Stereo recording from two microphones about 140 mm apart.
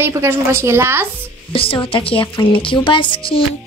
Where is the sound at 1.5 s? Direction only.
40° left (ahead or behind).